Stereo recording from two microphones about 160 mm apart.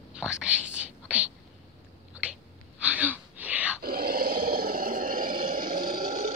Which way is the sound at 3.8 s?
70° right (ahead or behind).